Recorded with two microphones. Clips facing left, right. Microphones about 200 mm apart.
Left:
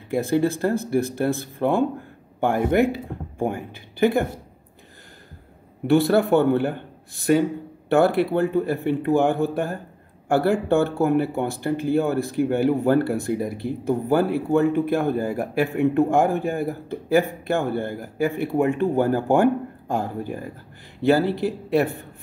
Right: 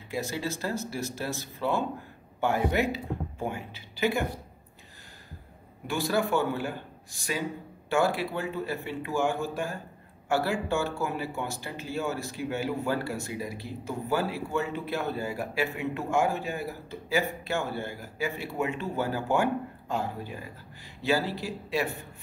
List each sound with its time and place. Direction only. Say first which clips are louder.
0.1 s speech: left 11 dB; 55° left (ahead or behind)
5.9 s speech: left 10 dB; 60° left (ahead or behind)